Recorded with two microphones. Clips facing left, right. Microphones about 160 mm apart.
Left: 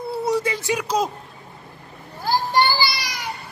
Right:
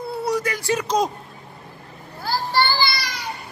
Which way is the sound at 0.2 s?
25° left (ahead or behind).